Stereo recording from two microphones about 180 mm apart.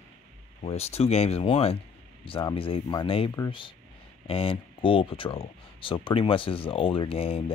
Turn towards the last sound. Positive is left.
turn(degrees=30)  # may be behind; listen again after turning